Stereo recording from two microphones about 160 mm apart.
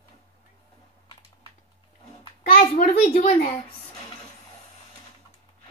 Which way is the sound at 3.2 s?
55° left (ahead or behind).